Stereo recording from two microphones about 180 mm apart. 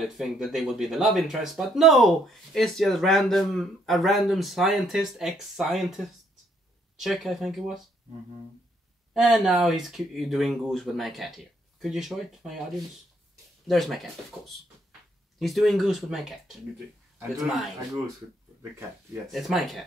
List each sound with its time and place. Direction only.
0.0 s speech: centre (ahead or behind)
9.1 s speech: centre (ahead or behind)
19.3 s speech: centre (ahead or behind)